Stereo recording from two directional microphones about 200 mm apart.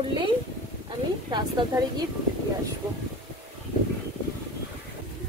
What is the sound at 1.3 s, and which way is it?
Speech, 20° right (ahead or behind).